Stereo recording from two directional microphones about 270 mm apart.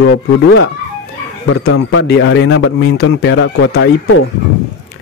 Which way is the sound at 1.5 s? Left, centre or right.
Left.